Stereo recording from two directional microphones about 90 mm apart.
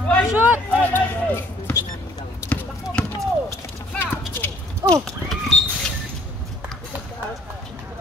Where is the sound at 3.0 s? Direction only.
10° left (ahead or behind).